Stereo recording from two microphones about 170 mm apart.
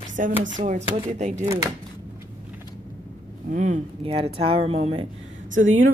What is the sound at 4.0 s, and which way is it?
Speech, 35° right (ahead or behind).